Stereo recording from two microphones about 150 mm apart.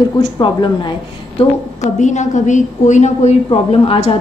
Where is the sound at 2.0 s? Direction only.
55° left (ahead or behind).